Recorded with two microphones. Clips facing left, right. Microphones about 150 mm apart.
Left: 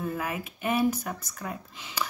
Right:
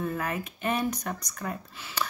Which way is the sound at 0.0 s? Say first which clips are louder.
Right 1 dB; 10° left (ahead or behind).